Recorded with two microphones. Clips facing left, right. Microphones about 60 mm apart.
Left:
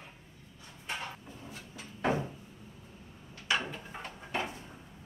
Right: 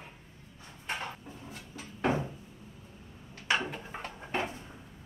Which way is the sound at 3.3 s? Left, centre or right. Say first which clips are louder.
Right 2 dB; right.